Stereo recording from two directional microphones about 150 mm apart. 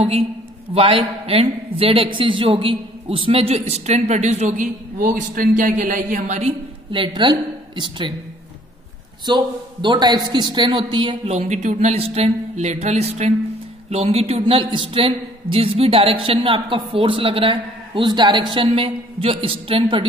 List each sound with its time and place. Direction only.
0.7 s a man's voice: 40° right (ahead or behind)
6.9 s a woman's voice: 35° right (ahead or behind)
9.2 s a man's voice: 30° right (ahead or behind)
11.3 s a man's voice: 50° right (ahead or behind); by 20.1 s 35° right (ahead or behind)